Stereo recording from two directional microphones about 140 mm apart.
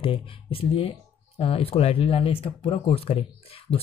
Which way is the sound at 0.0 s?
40° left (ahead or behind).